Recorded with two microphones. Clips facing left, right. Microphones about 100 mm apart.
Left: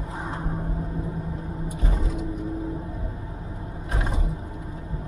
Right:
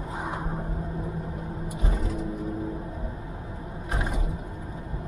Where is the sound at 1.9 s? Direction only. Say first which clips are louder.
Even; 20° left (ahead or behind).